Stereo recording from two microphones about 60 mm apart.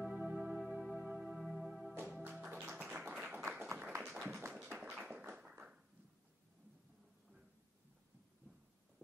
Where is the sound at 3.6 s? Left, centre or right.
Right.